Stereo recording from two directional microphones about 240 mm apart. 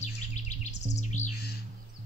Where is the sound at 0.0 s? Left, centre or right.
Left.